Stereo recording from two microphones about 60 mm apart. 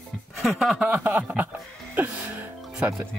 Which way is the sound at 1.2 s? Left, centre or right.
Right.